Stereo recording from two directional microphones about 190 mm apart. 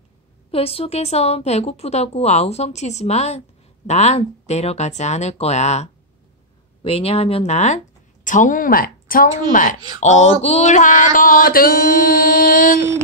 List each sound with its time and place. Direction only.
0.5 s a woman's voice: 30° left (ahead or behind); by 9.3 s 50° left (ahead or behind)
9.5 s music: 45° left (ahead or behind)
9.9 s speech: 35° left (ahead or behind)
10.4 s music: 35° left (ahead or behind)